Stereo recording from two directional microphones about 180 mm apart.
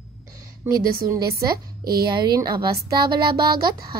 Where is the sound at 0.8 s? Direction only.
55° right (ahead or behind).